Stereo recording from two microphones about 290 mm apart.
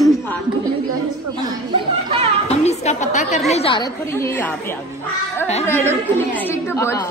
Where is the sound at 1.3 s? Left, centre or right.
Centre.